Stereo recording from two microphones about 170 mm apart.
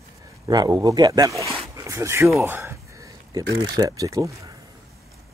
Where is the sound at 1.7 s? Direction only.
15° right (ahead or behind).